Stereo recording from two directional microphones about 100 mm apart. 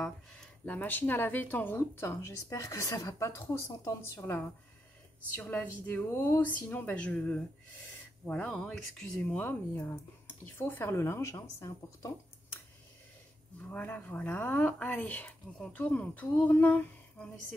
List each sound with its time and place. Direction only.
0.7 s speech: 20° left (ahead or behind); by 9.1 s 5° left (ahead or behind)
9.2 s speech: 15° left (ahead or behind)
13.6 s speech: 15° left (ahead or behind)